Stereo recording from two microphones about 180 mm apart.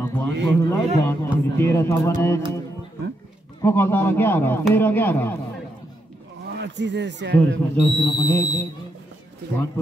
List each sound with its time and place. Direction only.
0.0 s speech: 10° left (ahead or behind)
3.6 s speech: 10° left (ahead or behind)
6.5 s speech: 75° right (ahead or behind)
7.3 s speech: centre (ahead or behind)
8.0 s speech: 20° left (ahead or behind)